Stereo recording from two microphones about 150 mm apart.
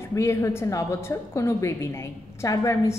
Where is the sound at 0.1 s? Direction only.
20° left (ahead or behind).